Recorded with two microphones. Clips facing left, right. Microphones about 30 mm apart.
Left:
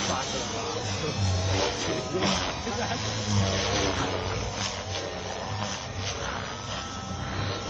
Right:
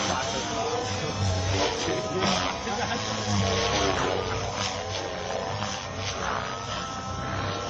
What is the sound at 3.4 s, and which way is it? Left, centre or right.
Vehicle, centre.